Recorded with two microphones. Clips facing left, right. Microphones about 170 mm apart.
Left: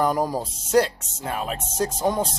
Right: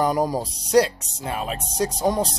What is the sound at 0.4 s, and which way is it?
Speech, centre (ahead or behind).